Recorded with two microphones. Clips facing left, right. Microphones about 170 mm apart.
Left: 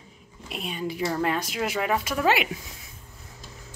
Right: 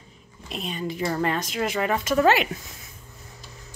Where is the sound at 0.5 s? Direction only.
10° left (ahead or behind).